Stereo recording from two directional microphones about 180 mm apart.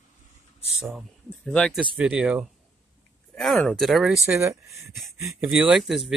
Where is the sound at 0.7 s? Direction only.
5° right (ahead or behind).